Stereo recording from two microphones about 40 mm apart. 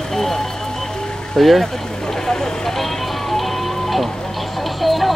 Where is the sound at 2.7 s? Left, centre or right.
Centre.